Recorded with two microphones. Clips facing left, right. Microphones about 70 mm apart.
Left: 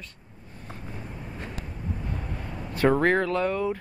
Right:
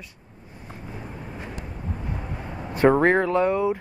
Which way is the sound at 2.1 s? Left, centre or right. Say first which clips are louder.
Right 2 dB; right.